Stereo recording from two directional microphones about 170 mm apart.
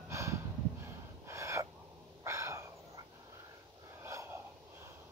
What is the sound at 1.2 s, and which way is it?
Gasp, 15° right (ahead or behind).